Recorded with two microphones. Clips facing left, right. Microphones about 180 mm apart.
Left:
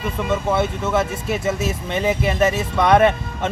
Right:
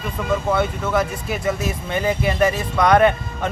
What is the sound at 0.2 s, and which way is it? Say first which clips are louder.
Speech: even; centre (ahead or behind).